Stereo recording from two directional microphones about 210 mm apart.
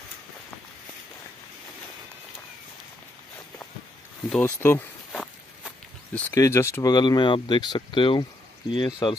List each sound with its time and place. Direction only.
4.3 s speech: 10° left (ahead or behind)
5.1 s walk: centre (ahead or behind)
6.1 s speech: 15° left (ahead or behind)